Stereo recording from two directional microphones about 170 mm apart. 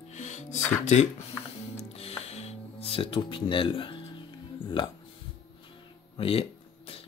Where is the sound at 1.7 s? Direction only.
35° left (ahead or behind).